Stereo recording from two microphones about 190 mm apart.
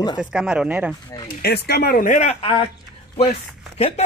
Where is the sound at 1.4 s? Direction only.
55° left (ahead or behind); by 2.6 s 30° left (ahead or behind).